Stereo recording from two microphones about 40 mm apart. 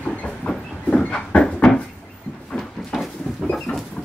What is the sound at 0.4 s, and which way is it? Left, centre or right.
Train, left.